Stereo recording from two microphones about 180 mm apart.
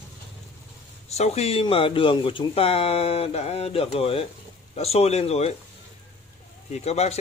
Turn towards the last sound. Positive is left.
turn(degrees=35)  # may be behind; listen again after turning